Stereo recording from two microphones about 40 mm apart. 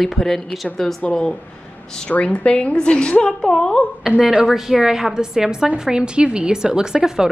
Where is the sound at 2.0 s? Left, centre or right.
Left; by 3.8 s centre.